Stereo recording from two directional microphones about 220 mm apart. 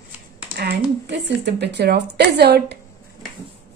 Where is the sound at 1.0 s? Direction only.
50° right (ahead or behind).